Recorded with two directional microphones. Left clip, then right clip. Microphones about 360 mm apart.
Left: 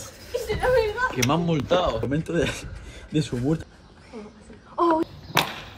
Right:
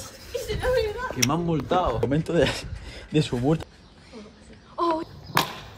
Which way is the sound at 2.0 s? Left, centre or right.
Right.